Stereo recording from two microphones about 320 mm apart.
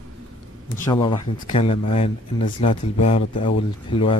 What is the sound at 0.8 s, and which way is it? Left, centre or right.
Speech, centre.